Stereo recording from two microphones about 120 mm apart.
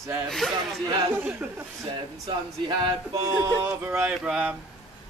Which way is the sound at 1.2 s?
15° right (ahead or behind).